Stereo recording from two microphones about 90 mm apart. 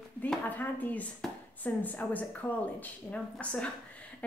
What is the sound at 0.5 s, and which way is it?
Speech, 20° left (ahead or behind).